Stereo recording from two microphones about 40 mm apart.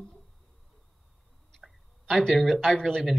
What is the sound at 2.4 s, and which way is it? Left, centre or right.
Speech, centre.